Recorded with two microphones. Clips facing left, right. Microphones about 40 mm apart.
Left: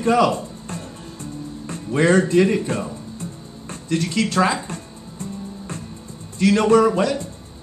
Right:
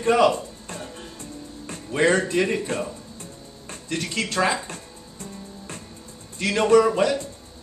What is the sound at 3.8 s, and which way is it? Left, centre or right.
Speech, centre.